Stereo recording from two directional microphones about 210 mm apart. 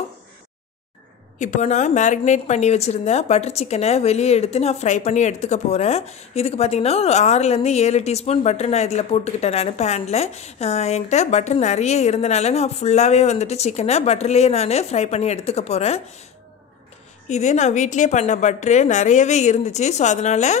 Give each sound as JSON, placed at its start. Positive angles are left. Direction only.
{"t": 1.4, "sound": "a woman's voice", "side_deg": 35}
{"t": 17.3, "sound": "a woman's voice", "side_deg": 35}